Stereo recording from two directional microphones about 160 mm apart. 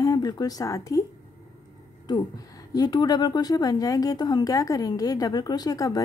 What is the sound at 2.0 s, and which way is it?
A woman's voice, 25° left (ahead or behind).